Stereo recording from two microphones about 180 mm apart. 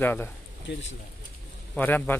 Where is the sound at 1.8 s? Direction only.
10° left (ahead or behind).